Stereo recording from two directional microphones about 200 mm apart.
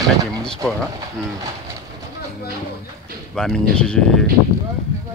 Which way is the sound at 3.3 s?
5° left (ahead or behind).